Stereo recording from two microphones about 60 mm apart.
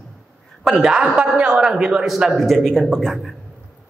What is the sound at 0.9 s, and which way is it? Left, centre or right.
A man's voice, centre.